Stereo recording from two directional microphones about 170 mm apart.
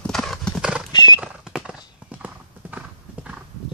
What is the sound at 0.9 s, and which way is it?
Clip-clop, 25° left (ahead or behind).